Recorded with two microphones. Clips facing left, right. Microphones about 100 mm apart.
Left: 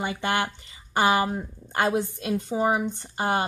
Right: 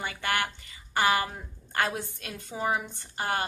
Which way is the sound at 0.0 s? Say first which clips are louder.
Left 4 dB; 20° left (ahead or behind).